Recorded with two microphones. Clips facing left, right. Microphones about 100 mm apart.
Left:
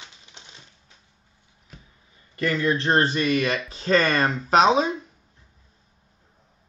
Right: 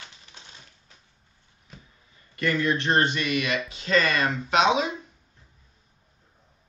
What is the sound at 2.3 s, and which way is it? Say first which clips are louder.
Speech: left 2 dB; 25° left (ahead or behind).